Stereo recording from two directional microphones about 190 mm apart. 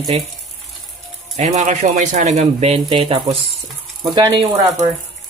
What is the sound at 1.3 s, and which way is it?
Speech, 40° right (ahead or behind).